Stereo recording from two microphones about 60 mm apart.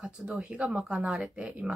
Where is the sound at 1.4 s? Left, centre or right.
Centre.